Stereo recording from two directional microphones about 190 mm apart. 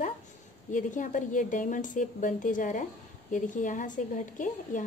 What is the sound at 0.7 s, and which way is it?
A woman's voice, 40° left (ahead or behind).